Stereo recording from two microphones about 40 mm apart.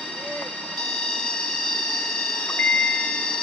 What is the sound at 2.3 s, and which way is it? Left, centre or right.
Wind chime, centre.